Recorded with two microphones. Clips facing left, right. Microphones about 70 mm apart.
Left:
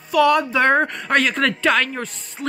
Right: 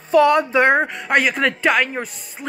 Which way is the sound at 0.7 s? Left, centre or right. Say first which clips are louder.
Even; centre.